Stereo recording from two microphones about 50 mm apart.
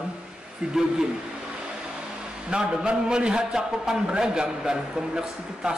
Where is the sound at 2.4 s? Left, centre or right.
Centre.